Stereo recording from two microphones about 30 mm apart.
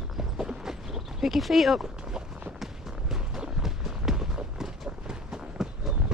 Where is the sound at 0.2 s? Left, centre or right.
Right; by 1.8 s centre.